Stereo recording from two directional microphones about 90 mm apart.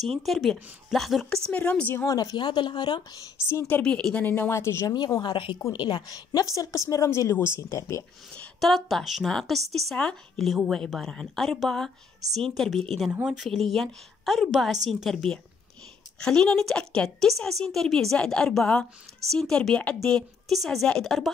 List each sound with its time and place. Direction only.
0.2 s speech: centre (ahead or behind)
1.5 s a woman's voice: 15° left (ahead or behind)
2.0 s speech: 45° left (ahead or behind)
3.6 s speech: 15° left (ahead or behind)
4.8 s a woman's voice: 55° left (ahead or behind); by 8.0 s 30° left (ahead or behind)
8.5 s speech: centre (ahead or behind)
16.2 s a woman's voice: 10° left (ahead or behind)